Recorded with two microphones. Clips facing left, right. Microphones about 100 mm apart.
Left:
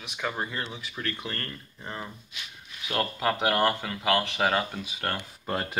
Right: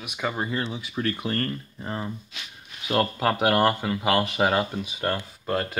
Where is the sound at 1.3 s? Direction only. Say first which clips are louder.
Right 9 dB; 35° right (ahead or behind); by 4.6 s 15° right (ahead or behind).